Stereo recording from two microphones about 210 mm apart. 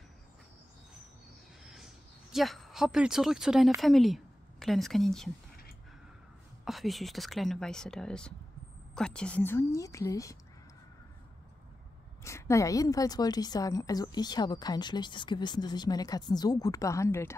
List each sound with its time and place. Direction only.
1.6 s a sound: centre (ahead or behind)
2.3 s a woman's voice: centre (ahead or behind)
6.6 s a woman's voice: centre (ahead or behind); by 10.3 s 15° left (ahead or behind)
12.2 s a woman's voice: 15° left (ahead or behind)